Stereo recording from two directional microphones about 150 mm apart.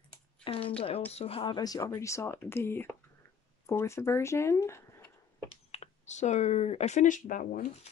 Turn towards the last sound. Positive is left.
turn(degrees=60)  # may be behind; listen again after turning